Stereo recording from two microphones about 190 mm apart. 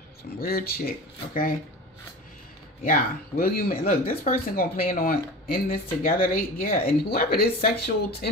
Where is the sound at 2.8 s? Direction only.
50° left (ahead or behind).